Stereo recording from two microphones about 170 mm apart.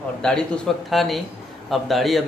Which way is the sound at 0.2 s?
5° left (ahead or behind).